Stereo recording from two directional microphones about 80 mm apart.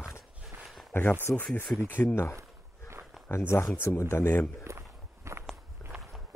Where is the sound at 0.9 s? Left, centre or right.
Left.